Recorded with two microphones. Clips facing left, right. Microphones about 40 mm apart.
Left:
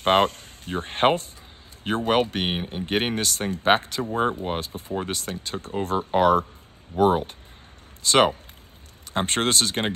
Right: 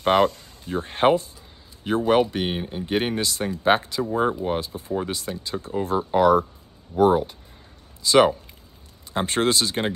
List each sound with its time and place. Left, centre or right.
0.0 s speech: left
2.5 s speech: left